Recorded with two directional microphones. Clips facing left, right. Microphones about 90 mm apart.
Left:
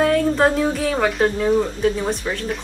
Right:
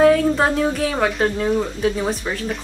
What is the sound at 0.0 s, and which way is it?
Speech, centre (ahead or behind).